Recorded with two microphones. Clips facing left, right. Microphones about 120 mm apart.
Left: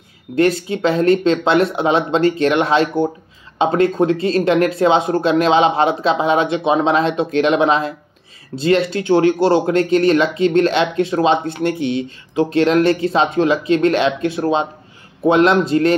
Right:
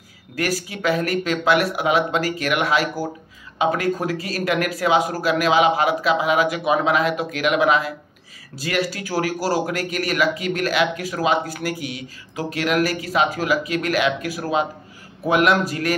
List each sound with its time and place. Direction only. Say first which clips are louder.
0.4 s speech: left 9 dB; 25° left (ahead or behind)